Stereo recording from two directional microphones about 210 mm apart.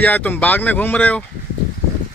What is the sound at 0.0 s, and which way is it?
Speech, 10° left (ahead or behind).